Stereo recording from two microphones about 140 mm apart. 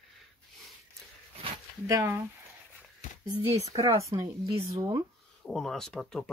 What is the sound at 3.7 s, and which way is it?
Speech, 25° right (ahead or behind).